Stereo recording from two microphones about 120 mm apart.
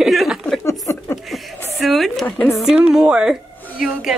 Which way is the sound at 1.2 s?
Centre (ahead or behind).